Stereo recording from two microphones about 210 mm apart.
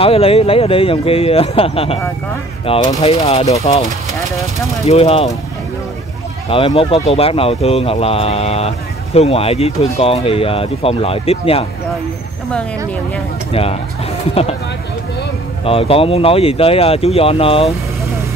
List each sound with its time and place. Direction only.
0.0 s speech: 25° left (ahead or behind)
4.8 s speech: 30° left (ahead or behind)
6.5 s speech: 25° left (ahead or behind)
13.5 s speech: 25° left (ahead or behind)
15.6 s speech: 25° left (ahead or behind)